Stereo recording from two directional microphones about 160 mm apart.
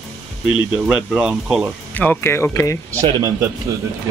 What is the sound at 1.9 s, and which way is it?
Speech, 10° left (ahead or behind).